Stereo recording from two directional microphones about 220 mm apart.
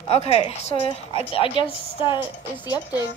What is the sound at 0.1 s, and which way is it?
A woman's voice, 25° left (ahead or behind).